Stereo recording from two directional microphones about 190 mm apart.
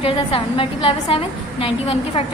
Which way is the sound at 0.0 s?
30° left (ahead or behind).